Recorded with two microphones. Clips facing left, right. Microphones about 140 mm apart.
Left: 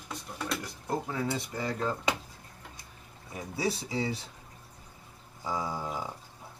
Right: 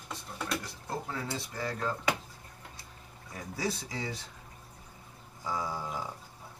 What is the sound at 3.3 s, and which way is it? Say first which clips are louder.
Speech: left 3 dB; 20° left (ahead or behind).